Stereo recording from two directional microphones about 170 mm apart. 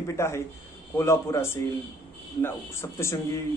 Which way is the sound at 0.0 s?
15° left (ahead or behind).